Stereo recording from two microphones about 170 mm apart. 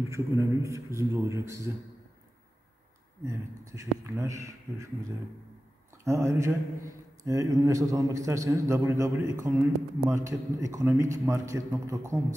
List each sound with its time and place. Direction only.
0.1 s speech: 15° right (ahead or behind)
3.3 s speech: 20° right (ahead or behind)
6.0 s a man's voice: 15° right (ahead or behind)